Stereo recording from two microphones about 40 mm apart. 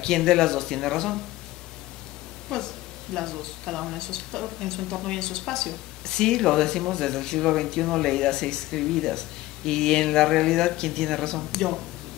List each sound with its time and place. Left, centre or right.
0.0 s a woman's voice: centre
2.5 s a woman's voice: centre